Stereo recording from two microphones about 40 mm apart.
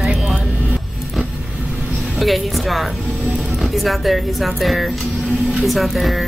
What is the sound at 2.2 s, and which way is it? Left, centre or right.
Music, centre.